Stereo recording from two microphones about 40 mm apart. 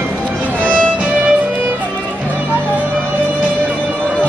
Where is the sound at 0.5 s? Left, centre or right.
Left.